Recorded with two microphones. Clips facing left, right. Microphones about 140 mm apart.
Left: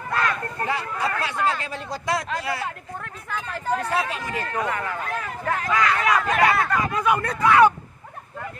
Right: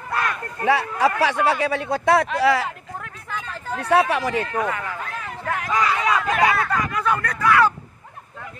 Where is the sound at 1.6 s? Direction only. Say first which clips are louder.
Right 8 dB; 65° right (ahead or behind); by 2.7 s 85° right.